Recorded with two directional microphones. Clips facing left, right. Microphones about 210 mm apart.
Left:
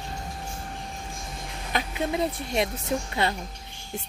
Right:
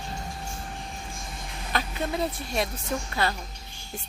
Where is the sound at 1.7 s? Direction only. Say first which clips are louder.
Left 2 dB; 20° left (ahead or behind).